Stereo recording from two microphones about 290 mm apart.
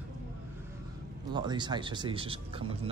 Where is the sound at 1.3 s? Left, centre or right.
Centre.